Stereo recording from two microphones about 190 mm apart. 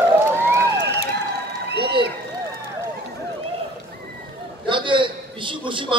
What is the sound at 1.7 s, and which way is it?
Applause, 60° right (ahead or behind).